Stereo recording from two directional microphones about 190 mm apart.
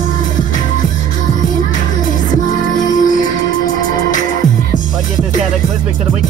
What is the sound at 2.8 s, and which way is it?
Music, 45° left (ahead or behind).